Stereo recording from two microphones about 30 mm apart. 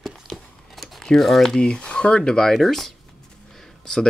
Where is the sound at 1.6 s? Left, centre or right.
Left.